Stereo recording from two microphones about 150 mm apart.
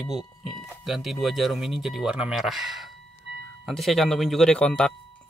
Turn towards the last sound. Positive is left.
turn(degrees=5)  # may be behind; listen again after turning